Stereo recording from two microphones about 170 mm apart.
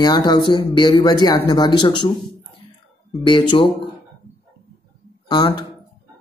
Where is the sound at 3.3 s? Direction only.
30° left (ahead or behind).